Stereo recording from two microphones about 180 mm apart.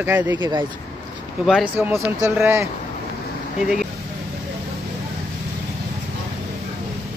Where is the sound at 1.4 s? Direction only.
Centre (ahead or behind).